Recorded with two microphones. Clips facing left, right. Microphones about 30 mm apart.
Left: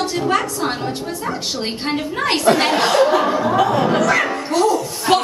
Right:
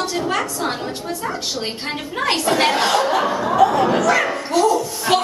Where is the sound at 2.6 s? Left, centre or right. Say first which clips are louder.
Left 2 dB; centre.